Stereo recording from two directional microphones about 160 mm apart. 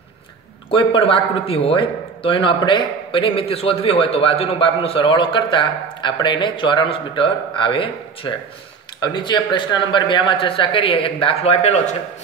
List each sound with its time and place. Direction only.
0.7 s speech: 35° left (ahead or behind)